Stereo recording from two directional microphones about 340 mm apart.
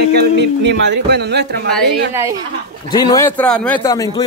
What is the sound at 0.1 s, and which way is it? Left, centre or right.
Speech, right.